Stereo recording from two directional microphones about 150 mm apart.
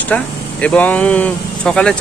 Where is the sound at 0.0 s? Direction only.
10° left (ahead or behind).